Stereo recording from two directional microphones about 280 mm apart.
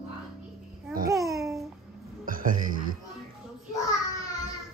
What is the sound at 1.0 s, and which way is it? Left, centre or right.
Babbling, centre.